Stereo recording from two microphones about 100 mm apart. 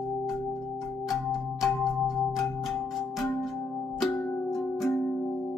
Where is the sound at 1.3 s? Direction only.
5° right (ahead or behind).